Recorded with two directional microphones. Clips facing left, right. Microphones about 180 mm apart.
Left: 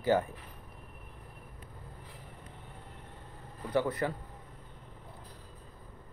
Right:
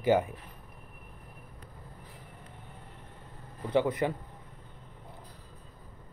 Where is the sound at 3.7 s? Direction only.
20° right (ahead or behind).